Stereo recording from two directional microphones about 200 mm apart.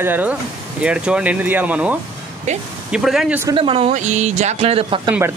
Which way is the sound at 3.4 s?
25° right (ahead or behind).